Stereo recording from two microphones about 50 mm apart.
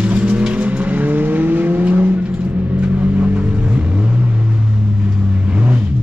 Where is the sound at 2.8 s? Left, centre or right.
Right.